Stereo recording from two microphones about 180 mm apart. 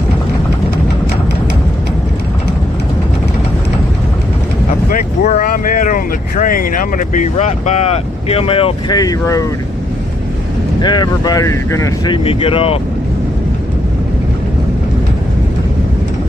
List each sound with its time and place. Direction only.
4.8 s speech: 45° left (ahead or behind); by 9.5 s 20° left (ahead or behind)
10.8 s speech: 25° left (ahead or behind)
12.3 s speech: 30° left (ahead or behind)